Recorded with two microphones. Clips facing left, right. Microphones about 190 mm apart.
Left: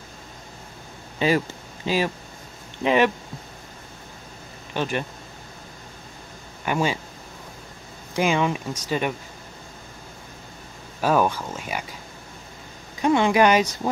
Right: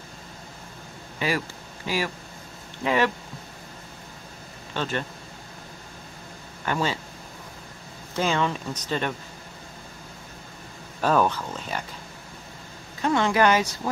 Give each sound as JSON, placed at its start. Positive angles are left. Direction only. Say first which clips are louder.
{"t": 1.2, "sound": "speech", "louder": "left 6 dB", "side_deg": 25}
{"t": 4.7, "sound": "speech", "louder": "left 3 dB", "side_deg": 15}
{"t": 6.6, "sound": "speech", "louder": "left 3 dB", "side_deg": 15}
{"t": 8.1, "sound": "speech", "louder": "left 3 dB", "side_deg": 15}
{"t": 11.0, "sound": "speech", "louder": "left 1 dB", "side_deg": 10}
{"t": 13.0, "sound": "speech", "louder": "left 3 dB", "side_deg": 15}